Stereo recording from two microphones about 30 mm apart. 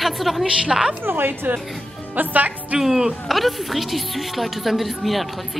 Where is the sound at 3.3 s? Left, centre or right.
Centre.